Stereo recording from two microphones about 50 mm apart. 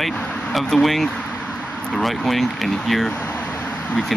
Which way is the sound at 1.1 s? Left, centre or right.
Centre.